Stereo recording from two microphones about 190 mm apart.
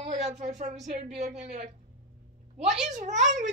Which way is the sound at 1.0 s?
35° right (ahead or behind).